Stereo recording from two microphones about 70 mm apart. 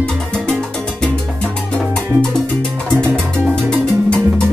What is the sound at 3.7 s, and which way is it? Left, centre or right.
Music, centre.